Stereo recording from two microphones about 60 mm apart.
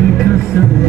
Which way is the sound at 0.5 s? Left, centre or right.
Left.